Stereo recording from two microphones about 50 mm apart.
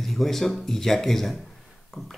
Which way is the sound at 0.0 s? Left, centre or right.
Centre.